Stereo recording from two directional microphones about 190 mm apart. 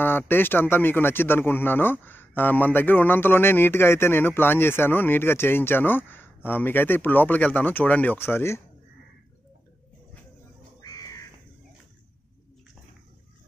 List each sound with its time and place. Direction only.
0.0 s speech: 10° left (ahead or behind)